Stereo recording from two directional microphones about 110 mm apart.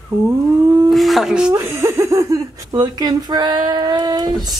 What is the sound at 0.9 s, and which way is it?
Speech, centre (ahead or behind).